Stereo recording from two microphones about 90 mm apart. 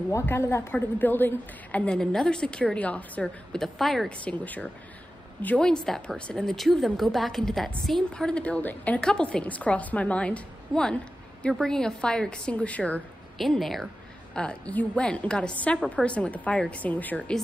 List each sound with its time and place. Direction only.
0.1 s a woman's voice: 30° left (ahead or behind); by 4.1 s centre (ahead or behind)
4.2 s a woman's voice: 15° left (ahead or behind)
13.4 s a woman's voice: centre (ahead or behind); by 17.2 s 20° left (ahead or behind)